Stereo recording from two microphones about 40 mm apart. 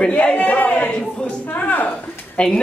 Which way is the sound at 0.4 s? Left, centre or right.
Left.